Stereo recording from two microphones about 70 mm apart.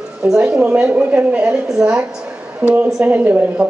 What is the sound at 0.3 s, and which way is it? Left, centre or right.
A man's voice, centre.